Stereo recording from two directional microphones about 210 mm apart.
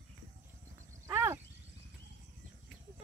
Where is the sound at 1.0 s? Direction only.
15° right (ahead or behind).